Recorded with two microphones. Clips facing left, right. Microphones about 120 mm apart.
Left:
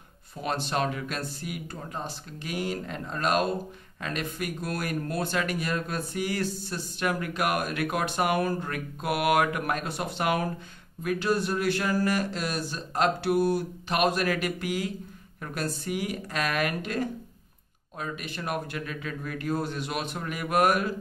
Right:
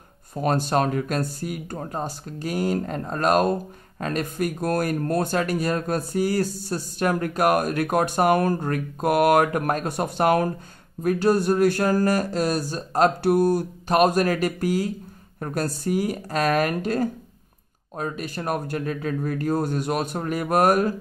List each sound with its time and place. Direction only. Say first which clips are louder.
0.4 s speech: right 7 dB; 45° right (ahead or behind)